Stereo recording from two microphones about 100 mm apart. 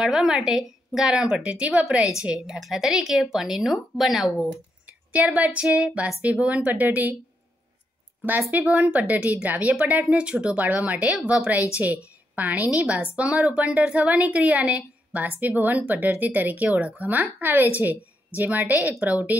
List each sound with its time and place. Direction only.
0.0 s a woman's voice: 5° right (ahead or behind)
4.8 s a woman's voice: 15° right (ahead or behind)
8.4 s a woman's voice: 15° right (ahead or behind)
11.1 s a woman's voice: 5° right (ahead or behind)